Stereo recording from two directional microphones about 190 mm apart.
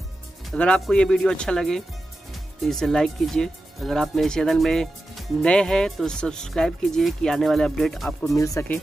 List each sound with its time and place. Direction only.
0.5 s speech: 5° left (ahead or behind)
8.4 s speech: 15° left (ahead or behind)